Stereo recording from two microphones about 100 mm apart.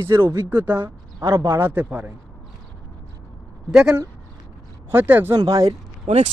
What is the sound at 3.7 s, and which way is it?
Speech, 10° right (ahead or behind).